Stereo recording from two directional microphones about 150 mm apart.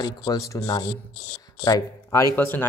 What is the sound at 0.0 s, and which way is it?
Speech, 25° left (ahead or behind).